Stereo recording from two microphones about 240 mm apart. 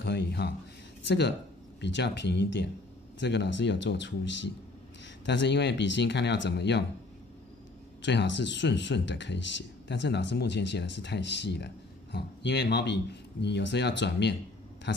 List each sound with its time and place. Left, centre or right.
0.0 s speech: left
8.0 s speech: left